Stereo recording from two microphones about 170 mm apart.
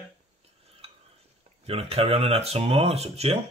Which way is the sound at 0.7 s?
35° right (ahead or behind).